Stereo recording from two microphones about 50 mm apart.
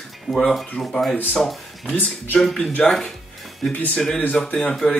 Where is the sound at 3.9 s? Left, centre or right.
Centre.